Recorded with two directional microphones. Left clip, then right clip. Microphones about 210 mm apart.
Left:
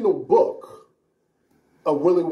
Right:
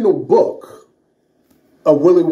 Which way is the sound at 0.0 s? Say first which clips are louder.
Right 5 dB; 45° right (ahead or behind).